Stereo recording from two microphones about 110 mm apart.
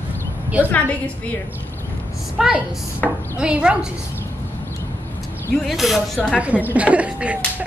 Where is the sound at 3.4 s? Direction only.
10° right (ahead or behind).